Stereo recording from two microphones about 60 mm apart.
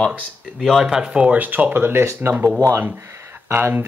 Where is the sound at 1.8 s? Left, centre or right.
Right.